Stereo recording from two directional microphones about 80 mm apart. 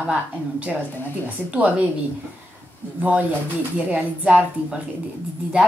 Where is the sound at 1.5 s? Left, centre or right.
Centre.